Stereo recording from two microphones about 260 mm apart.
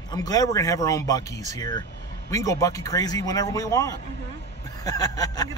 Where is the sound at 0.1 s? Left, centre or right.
Centre.